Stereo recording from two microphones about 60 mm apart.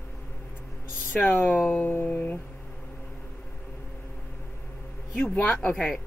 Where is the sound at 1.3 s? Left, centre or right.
Left.